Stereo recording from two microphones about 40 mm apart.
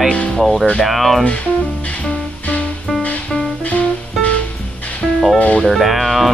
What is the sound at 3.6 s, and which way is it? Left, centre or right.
Music, left.